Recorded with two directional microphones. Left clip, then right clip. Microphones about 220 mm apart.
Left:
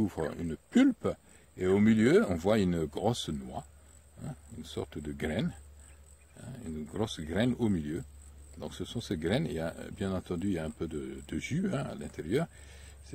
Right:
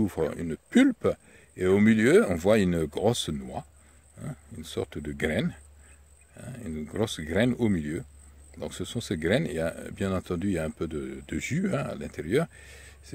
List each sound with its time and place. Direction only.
0.0 s speech: 35° right (ahead or behind)